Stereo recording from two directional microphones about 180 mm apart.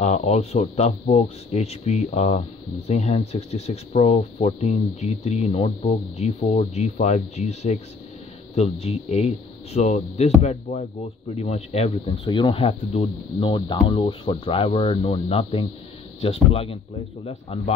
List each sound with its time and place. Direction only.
0.0 s speech: 40° left (ahead or behind)